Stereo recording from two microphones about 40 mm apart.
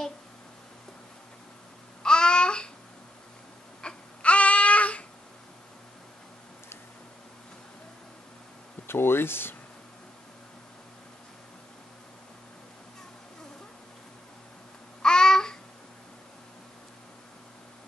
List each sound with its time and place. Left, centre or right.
2.0 s babbling: left
3.8 s baby cry: left
4.2 s babbling: left
8.8 s speech: left
15.0 s babbling: centre